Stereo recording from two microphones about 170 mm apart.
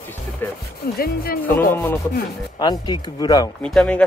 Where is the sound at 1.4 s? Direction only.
10° left (ahead or behind).